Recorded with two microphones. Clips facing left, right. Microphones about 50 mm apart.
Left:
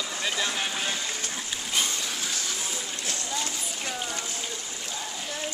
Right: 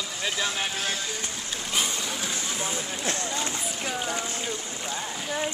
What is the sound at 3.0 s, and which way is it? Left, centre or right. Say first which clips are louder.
Run: right 3 dB; right.